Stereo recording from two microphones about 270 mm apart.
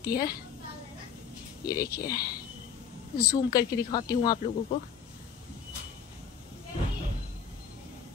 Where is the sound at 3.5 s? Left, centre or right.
Centre.